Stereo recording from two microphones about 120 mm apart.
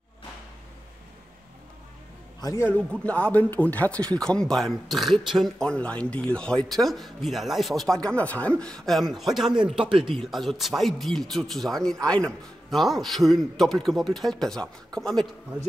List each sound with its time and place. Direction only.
2.4 s a man's voice: 20° left (ahead or behind)
3.1 s speech: 10° left (ahead or behind)